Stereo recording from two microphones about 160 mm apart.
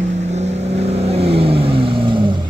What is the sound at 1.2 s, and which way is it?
Vehicle, 35° right (ahead or behind).